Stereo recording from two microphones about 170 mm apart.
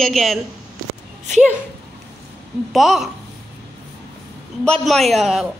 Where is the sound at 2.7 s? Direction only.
Centre (ahead or behind).